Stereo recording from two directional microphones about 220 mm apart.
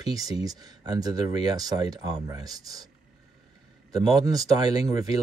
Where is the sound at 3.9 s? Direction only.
15° right (ahead or behind).